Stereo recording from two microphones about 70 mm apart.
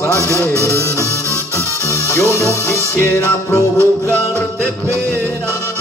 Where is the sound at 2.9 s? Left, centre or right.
Left.